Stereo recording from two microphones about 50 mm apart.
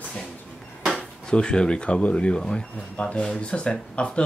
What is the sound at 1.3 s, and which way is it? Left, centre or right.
Speech, centre.